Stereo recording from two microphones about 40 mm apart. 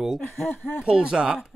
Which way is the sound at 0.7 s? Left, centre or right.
Right.